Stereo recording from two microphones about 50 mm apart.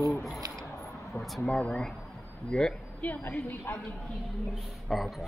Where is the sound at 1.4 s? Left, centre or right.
Centre.